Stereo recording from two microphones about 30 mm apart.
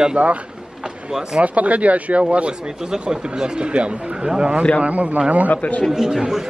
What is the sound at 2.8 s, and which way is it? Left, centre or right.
Speech, centre.